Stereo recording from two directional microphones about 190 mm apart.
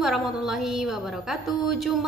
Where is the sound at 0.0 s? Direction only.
Centre (ahead or behind).